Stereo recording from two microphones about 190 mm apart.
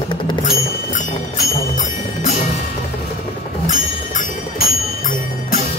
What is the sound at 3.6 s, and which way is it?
Music, 40° left (ahead or behind).